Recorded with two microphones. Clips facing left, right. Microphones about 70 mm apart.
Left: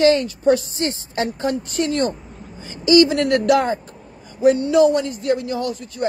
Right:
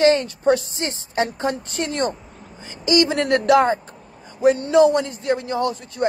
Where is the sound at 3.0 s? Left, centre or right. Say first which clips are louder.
Left 1 dB; right.